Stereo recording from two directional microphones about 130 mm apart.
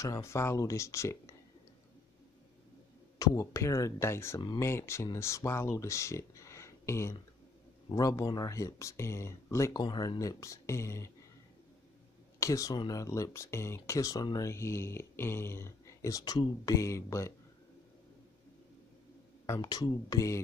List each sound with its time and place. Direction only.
0.0 s speech: 25° left (ahead or behind)
3.2 s speech: 25° left (ahead or behind)
12.4 s speech: 25° left (ahead or behind)
19.4 s speech: 25° left (ahead or behind)